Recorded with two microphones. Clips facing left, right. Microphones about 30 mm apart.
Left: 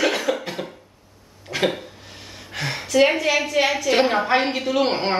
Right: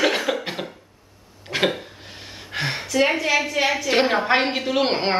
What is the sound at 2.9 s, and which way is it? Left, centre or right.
Speech, centre.